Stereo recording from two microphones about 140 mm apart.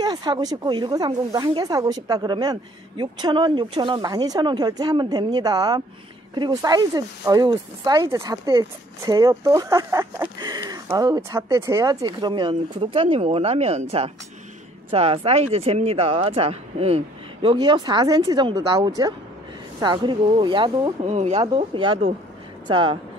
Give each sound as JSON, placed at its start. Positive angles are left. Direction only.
{"t": 0.0, "sound": "speech", "side_deg": -30}
{"t": 21.1, "sound": "speech", "side_deg": -50}
{"t": 21.4, "sound": "speech", "side_deg": -35}